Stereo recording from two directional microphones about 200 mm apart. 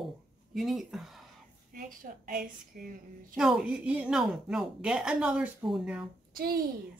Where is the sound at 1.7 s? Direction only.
45° right (ahead or behind).